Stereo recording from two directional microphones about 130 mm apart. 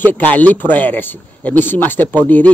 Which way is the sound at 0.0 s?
15° left (ahead or behind).